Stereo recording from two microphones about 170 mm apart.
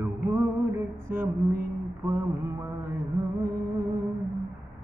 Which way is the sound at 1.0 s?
15° right (ahead or behind).